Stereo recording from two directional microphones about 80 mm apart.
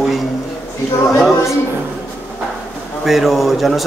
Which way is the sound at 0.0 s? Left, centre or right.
Centre.